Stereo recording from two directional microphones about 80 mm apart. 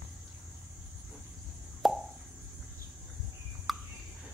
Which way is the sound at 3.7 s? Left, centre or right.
Centre.